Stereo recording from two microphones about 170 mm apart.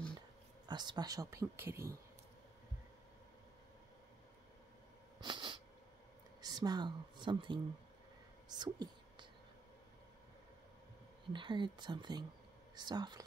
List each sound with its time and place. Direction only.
0.7 s speech: 25° right (ahead or behind)
5.2 s cat: 30° right (ahead or behind)
6.4 s speech: 25° right (ahead or behind)
8.5 s whispering: 25° right (ahead or behind)
11.3 s speech: 30° right (ahead or behind)